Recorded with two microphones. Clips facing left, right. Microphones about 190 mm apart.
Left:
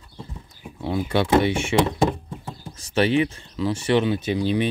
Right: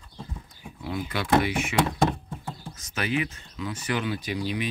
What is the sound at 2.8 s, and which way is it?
Speech, 30° left (ahead or behind).